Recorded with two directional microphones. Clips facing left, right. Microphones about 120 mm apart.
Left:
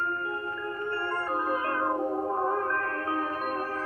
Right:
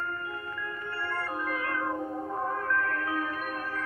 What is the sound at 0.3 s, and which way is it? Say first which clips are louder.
Music: left 4 dB; 30° left (ahead or behind).